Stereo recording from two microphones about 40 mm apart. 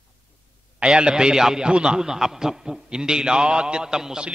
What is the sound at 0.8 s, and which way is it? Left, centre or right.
A man's voice, right.